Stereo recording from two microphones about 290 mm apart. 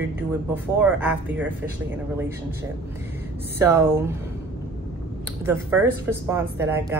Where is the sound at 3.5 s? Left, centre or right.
Centre.